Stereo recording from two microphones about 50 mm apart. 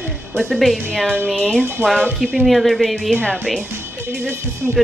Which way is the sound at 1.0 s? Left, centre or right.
Centre.